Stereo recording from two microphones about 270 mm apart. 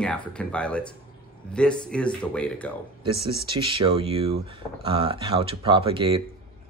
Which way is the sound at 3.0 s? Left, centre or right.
Centre.